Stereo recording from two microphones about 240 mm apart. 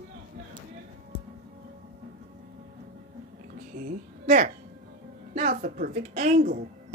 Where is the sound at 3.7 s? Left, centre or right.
Right.